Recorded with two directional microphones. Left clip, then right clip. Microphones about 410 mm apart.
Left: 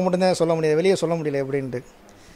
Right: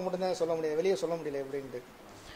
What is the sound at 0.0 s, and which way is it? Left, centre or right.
Speech, left.